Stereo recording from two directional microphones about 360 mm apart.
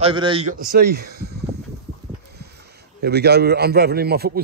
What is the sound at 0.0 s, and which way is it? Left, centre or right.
A man's voice, centre.